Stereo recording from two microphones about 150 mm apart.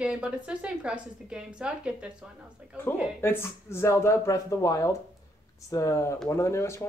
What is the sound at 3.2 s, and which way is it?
Speech, 15° left (ahead or behind).